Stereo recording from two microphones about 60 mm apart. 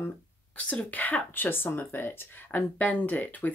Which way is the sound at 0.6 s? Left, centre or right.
Left.